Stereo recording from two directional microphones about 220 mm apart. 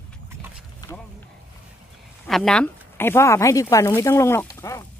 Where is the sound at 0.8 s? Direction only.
15° left (ahead or behind).